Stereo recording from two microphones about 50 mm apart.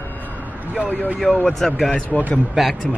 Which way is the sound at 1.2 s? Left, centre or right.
Centre.